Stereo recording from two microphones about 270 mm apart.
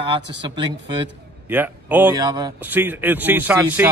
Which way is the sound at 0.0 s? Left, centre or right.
Centre.